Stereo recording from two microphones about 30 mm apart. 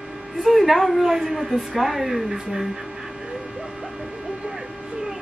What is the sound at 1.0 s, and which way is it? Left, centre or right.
Speech, centre.